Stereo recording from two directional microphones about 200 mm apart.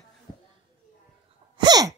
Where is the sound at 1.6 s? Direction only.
20° right (ahead or behind).